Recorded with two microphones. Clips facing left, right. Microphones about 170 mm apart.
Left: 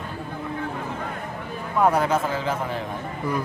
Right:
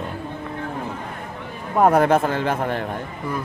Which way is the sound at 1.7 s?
50° right (ahead or behind).